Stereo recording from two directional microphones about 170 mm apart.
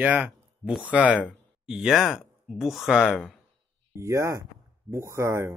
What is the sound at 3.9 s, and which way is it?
Speech, 15° right (ahead or behind).